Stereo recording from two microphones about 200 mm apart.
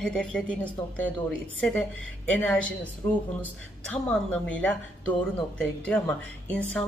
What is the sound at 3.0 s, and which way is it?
A woman's voice, 10° left (ahead or behind).